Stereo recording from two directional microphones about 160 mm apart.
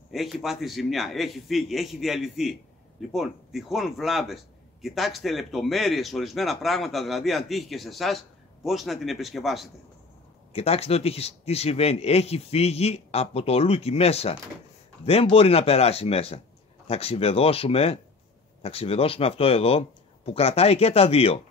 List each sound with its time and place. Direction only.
0.1 s speech: centre (ahead or behind)
10.5 s speech: 40° left (ahead or behind)